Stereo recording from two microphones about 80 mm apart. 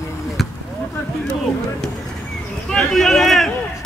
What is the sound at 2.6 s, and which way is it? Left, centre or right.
Speech, centre.